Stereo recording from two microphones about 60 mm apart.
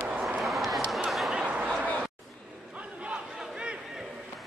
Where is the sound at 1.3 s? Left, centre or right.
Centre.